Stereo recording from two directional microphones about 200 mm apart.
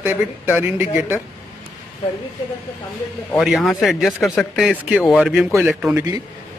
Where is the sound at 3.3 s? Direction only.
Centre (ahead or behind).